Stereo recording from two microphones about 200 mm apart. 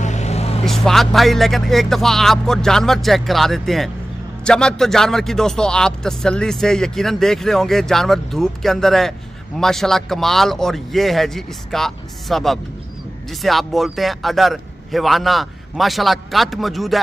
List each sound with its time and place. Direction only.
0.0 s vehicle: 35° left (ahead or behind)
0.7 s a man's voice: centre (ahead or behind)